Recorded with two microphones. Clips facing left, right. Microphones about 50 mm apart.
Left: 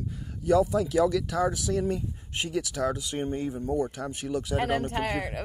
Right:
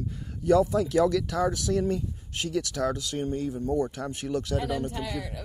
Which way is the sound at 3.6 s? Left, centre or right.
Centre.